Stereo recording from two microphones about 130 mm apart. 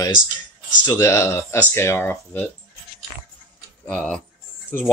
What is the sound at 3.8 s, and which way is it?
Speech, 10° left (ahead or behind).